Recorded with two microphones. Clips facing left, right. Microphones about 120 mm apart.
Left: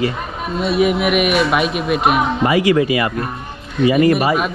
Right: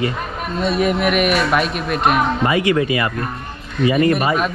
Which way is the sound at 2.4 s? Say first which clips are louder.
Left 5 dB; 25° left (ahead or behind).